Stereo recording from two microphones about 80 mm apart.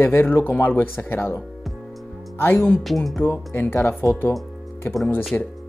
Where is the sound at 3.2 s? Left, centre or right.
Left.